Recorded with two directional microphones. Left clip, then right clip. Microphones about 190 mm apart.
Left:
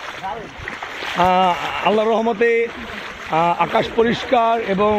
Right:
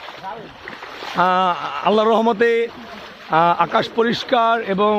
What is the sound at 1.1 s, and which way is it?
Speech, 35° right (ahead or behind).